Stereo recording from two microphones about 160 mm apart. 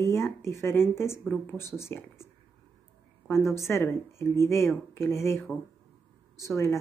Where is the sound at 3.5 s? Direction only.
15° left (ahead or behind).